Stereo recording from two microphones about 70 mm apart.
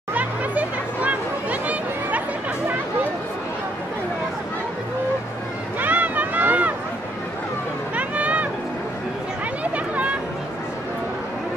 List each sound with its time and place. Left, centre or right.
0.1 s music: right
5.8 s run: right
7.9 s vehicle: right
9.6 s a sound: right